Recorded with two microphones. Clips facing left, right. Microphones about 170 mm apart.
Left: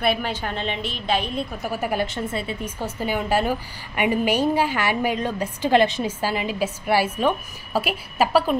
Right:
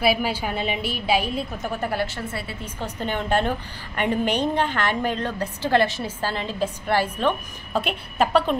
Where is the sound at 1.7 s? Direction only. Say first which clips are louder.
Left 2 dB; 10° left (ahead or behind).